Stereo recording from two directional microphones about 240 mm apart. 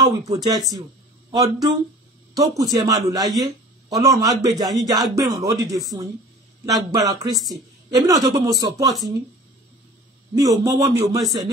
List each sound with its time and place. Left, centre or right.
0.0 s a woman's voice: centre
10.3 s a woman's voice: centre